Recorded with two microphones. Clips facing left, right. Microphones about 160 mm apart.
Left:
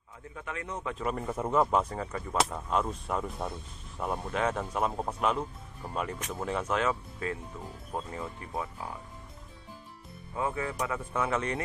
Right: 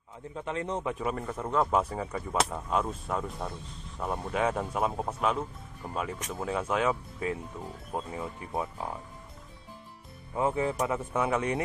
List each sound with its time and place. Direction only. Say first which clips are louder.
0.3 s a man's voice: right 6 dB; 30° right (ahead or behind)
1.0 s speech: left 1 dB; 5° left (ahead or behind)
1.7 s speech: right 1 dB; 5° right (ahead or behind)
10.3 s a man's voice: right 4 dB; 25° right (ahead or behind)